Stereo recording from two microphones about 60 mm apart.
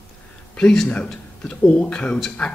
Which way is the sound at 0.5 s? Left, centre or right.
Centre.